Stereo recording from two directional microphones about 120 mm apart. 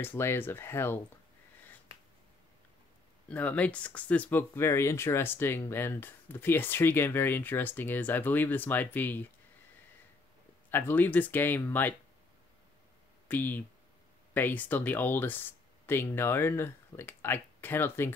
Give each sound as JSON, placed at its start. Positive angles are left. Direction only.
{"t": 0.0, "sound": "speech", "side_deg": 20}
{"t": 3.3, "sound": "speech", "side_deg": 10}
{"t": 10.7, "sound": "speech", "side_deg": 15}
{"t": 13.3, "sound": "speech", "side_deg": 15}